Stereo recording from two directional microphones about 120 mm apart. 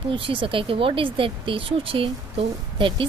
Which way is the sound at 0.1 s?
45° right (ahead or behind).